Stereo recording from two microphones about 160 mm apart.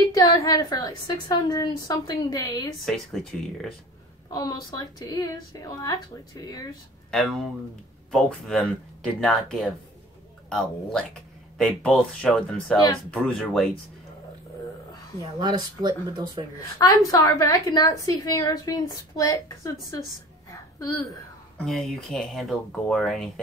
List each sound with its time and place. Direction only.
0.1 s a woman's voice: 25° left (ahead or behind)
4.3 s a woman's voice: 25° left (ahead or behind)
7.1 s speech: centre (ahead or behind)
15.3 s speech: 25° right (ahead or behind)
16.7 s a woman's voice: 20° left (ahead or behind)
21.5 s speech: centre (ahead or behind)